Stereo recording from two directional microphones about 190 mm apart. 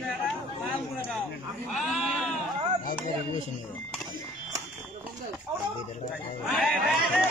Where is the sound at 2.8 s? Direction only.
45° left (ahead or behind).